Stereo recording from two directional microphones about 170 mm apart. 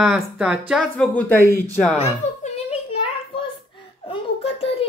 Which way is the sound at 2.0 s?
40° left (ahead or behind).